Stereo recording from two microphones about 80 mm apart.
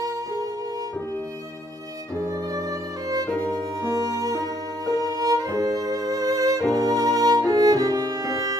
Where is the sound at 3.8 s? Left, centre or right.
Right.